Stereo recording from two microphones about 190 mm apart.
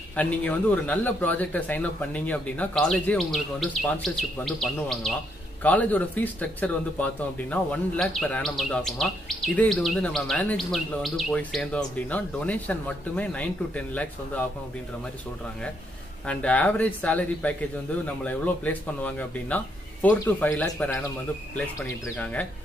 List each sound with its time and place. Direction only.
0.1 s a man's voice: 10° left (ahead or behind)
16.3 s a man's voice: 5° left (ahead or behind)